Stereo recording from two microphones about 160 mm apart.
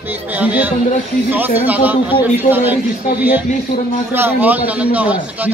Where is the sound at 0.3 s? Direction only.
10° right (ahead or behind).